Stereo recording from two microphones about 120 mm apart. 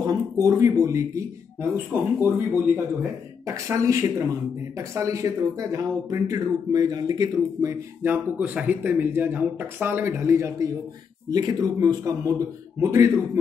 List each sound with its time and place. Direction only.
0.0 s speech: 25° right (ahead or behind)
2.1 s speech: 15° right (ahead or behind)
3.4 s speech: 25° right (ahead or behind)
8.0 s speech: 15° right (ahead or behind)